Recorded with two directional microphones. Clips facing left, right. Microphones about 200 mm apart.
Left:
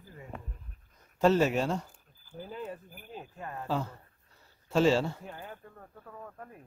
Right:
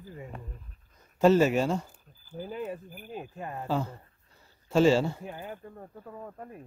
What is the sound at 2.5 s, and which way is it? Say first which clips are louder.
Speech: right 4 dB; 15° right (ahead or behind).